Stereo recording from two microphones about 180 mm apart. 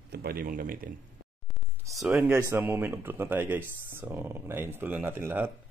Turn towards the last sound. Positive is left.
turn(degrees=-10)  # may be behind; listen again after turning